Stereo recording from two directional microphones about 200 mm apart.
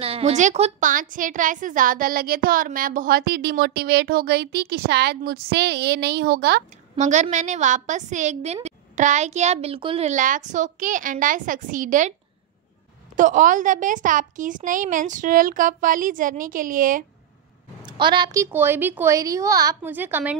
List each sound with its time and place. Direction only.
0.0 s a woman's voice: 30° right (ahead or behind); by 6.6 s 55° right (ahead or behind)
7.0 s a woman's voice: 35° right (ahead or behind)
13.1 s a woman's voice: 40° right (ahead or behind)
17.8 s a woman's voice: 25° right (ahead or behind)